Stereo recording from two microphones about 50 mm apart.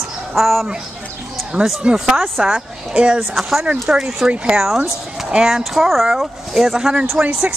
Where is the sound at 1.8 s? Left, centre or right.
Centre.